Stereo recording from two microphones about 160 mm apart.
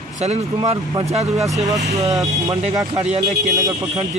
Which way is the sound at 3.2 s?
20° right (ahead or behind).